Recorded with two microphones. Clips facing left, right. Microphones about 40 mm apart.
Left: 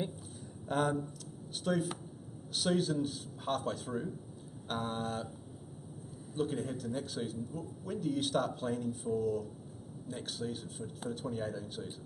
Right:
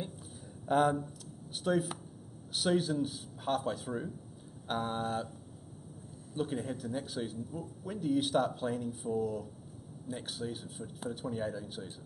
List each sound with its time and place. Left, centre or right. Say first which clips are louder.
0.7 s a man's voice: right 4 dB; centre
6.3 s a man's voice: even; centre